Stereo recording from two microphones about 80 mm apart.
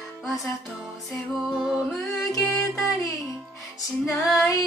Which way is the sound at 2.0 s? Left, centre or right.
Left.